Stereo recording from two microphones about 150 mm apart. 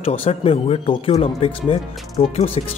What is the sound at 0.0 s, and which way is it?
Speech, 40° left (ahead or behind).